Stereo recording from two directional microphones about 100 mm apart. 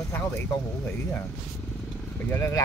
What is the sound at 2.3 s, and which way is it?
Speech, 25° left (ahead or behind).